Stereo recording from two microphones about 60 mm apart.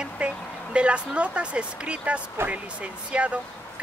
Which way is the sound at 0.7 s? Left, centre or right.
Centre.